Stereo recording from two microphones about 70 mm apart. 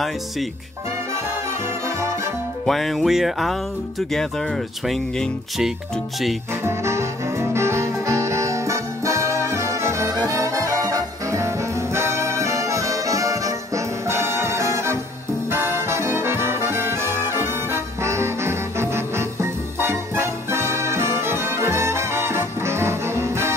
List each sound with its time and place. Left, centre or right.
2.6 s music: centre
6.6 s music: right